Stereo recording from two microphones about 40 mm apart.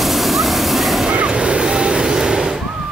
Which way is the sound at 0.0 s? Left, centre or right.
Centre.